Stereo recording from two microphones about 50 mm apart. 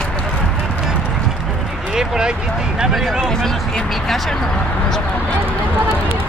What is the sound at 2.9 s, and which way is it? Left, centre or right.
Speech, centre.